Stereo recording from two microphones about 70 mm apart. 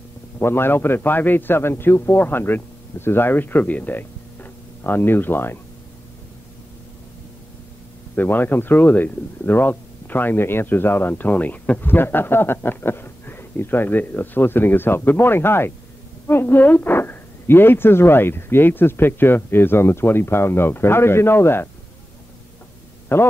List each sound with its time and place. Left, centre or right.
0.4 s a man's voice: left
8.2 s a man's voice: left
23.1 s a man's voice: left